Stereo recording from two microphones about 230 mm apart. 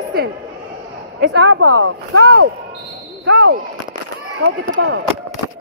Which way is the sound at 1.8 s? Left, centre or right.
Right.